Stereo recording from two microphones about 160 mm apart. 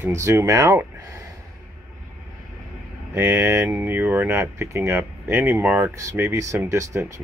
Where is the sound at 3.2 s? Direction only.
15° right (ahead or behind).